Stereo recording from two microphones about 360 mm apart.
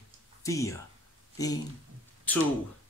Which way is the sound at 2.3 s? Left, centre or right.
Centre.